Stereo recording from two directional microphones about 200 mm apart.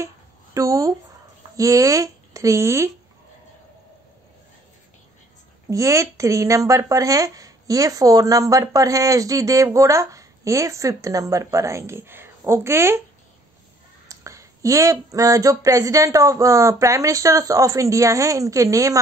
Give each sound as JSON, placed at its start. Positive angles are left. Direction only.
{"t": 0.6, "sound": "speech", "side_deg": -15}
{"t": 5.7, "sound": "speech", "side_deg": -15}
{"t": 14.0, "sound": "speech", "side_deg": -15}